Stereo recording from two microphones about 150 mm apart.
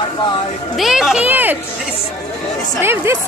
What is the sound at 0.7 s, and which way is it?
Speech, centre (ahead or behind).